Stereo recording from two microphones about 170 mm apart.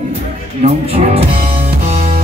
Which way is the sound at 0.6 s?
35° right (ahead or behind).